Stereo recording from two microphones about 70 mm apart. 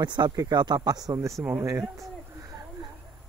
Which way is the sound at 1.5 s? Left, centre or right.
Right.